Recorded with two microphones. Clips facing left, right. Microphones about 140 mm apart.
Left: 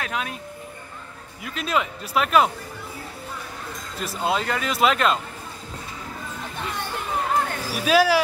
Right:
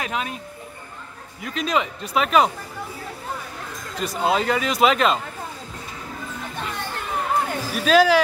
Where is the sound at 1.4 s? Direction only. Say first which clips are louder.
Right 2 dB; 5° left (ahead or behind).